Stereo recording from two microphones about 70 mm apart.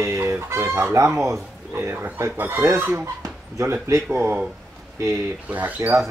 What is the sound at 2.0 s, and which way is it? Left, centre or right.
Speech, right.